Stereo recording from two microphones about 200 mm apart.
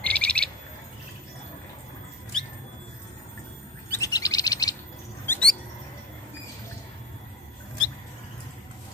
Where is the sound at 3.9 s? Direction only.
15° left (ahead or behind).